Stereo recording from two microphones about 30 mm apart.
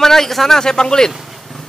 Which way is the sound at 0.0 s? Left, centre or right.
Centre.